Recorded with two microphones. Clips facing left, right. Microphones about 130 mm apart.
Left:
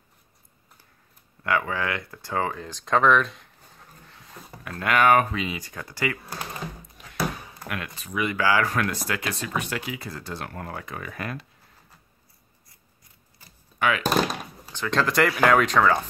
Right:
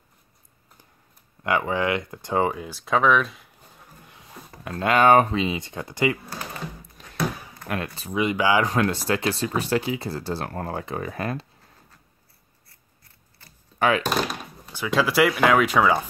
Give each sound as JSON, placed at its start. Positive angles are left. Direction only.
{"t": 1.4, "sound": "speech", "side_deg": -20}
{"t": 4.1, "sound": "a sound", "side_deg": -15}
{"t": 4.6, "sound": "speech", "side_deg": -25}
{"t": 7.6, "sound": "speech", "side_deg": -30}
{"t": 12.6, "sound": "scissors", "side_deg": 15}
{"t": 13.7, "sound": "speech", "side_deg": -35}
{"t": 14.7, "sound": "speech", "side_deg": -10}